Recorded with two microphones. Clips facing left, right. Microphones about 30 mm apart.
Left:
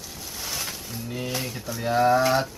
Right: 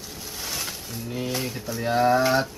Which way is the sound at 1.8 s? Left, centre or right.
Centre.